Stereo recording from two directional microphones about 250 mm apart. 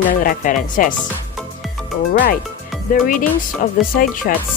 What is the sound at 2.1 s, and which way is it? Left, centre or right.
Speech, left.